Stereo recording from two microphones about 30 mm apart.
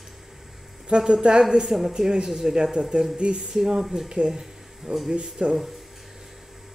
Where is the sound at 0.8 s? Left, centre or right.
Right.